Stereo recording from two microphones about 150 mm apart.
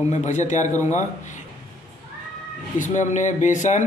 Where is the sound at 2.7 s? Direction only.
55° left (ahead or behind).